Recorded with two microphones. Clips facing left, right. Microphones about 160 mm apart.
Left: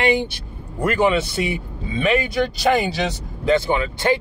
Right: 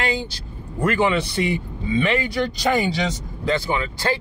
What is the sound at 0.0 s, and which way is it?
Speech, 25° left (ahead or behind).